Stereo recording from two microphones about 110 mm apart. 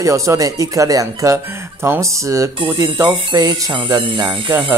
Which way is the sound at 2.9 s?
45° right (ahead or behind).